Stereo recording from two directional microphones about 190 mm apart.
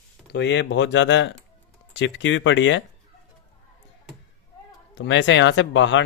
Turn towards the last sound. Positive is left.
turn(degrees=75)  # may be behind; listen again after turning